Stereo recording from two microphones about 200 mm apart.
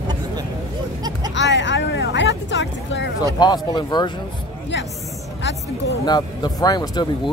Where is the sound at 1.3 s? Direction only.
60° left (ahead or behind).